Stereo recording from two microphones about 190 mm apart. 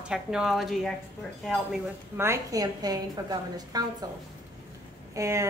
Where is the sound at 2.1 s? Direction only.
15° right (ahead or behind).